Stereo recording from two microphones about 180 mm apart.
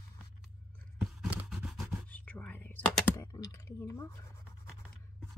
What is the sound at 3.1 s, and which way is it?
Speech, 20° left (ahead or behind).